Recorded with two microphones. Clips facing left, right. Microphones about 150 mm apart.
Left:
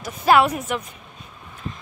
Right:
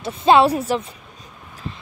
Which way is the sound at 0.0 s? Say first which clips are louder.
Right 3 dB; 25° right (ahead or behind).